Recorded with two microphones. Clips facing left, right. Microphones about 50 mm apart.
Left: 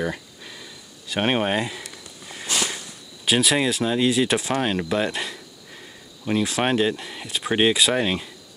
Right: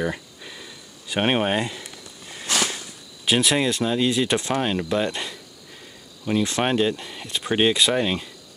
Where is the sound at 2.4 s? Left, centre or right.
Right.